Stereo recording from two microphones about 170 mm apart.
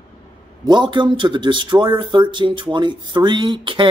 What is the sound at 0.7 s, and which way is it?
Speech, 25° right (ahead or behind).